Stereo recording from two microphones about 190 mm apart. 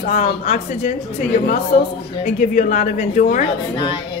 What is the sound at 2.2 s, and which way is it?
A woman's voice, 40° left (ahead or behind).